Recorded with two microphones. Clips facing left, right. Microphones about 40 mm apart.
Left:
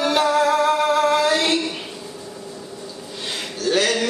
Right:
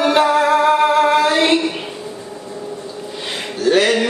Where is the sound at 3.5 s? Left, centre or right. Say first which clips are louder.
Right 6 dB; right.